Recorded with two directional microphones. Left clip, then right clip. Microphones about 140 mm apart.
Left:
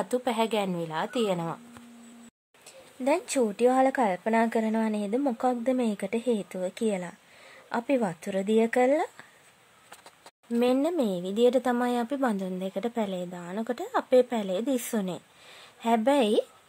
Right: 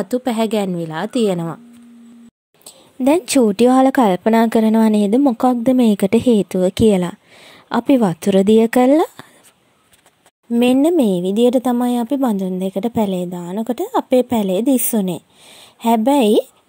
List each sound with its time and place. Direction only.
0.0 s a woman's voice: 30° right (ahead or behind)
2.6 s speech: 60° right (ahead or behind)
10.6 s a woman's voice: 50° right (ahead or behind); by 16.4 s 30° right (ahead or behind)